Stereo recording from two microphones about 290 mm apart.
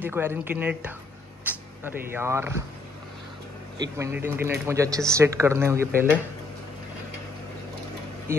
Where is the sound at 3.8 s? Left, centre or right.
Centre.